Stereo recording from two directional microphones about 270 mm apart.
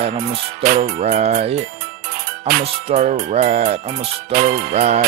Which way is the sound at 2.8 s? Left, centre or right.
Right.